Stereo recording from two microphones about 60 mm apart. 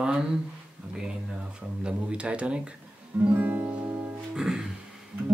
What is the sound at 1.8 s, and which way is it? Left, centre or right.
Speech, centre.